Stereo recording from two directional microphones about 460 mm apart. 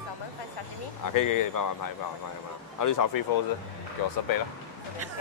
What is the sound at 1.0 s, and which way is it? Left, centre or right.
Speech, left.